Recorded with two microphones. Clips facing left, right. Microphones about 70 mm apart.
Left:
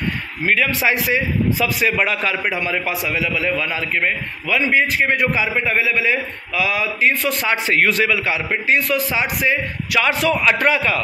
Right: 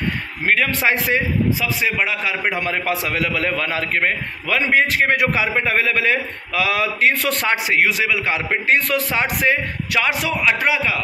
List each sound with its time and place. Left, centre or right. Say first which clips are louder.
0.5 s a man's voice: even; right
1.6 s a man's voice: left 2 dB; centre
2.4 s a man's voice: even; right
3.1 s a man's voice: even; right
7.5 s a man's voice: left 3 dB; centre
8.6 s a man's voice: left 1 dB; right
9.9 s a man's voice: left 3 dB; right
10.4 s a man's voice: right 2 dB; centre